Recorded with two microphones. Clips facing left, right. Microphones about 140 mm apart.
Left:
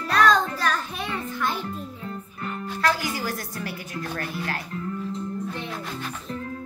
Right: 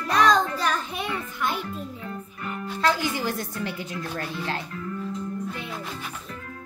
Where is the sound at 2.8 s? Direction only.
20° right (ahead or behind).